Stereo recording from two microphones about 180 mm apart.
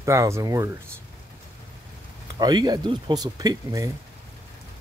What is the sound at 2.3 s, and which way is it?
Speech, 25° right (ahead or behind).